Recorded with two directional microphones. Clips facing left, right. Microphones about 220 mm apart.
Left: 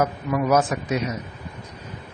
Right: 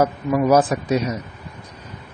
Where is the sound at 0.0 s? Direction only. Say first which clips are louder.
Right 4 dB; 35° right (ahead or behind).